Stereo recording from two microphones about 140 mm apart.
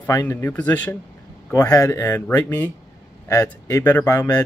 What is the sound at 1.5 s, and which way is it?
Speech, 25° left (ahead or behind).